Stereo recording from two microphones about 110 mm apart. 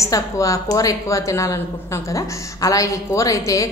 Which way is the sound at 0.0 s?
30° left (ahead or behind).